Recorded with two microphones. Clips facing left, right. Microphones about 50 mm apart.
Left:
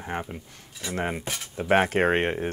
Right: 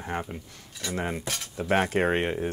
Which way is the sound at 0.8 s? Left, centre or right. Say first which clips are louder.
Even; centre.